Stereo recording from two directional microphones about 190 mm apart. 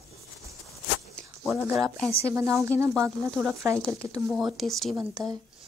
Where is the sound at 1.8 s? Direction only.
Centre (ahead or behind).